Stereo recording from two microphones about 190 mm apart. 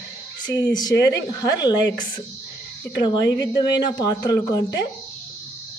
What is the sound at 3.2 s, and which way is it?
Speech, 70° left (ahead or behind).